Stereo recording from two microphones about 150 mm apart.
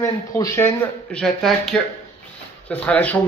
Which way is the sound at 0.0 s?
20° left (ahead or behind).